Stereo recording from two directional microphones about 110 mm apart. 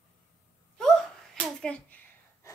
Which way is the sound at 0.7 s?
5° left (ahead or behind).